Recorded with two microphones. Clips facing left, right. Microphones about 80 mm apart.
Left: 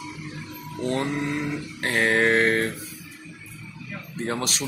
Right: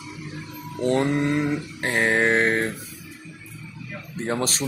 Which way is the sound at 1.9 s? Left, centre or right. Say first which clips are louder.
Even; centre.